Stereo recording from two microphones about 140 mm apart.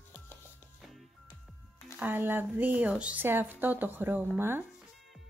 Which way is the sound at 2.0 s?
15° right (ahead or behind).